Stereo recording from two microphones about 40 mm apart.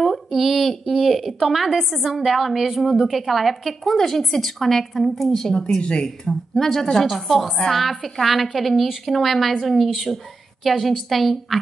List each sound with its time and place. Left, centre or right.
0.0 s speech: centre
5.8 s speech: left; by 11.6 s centre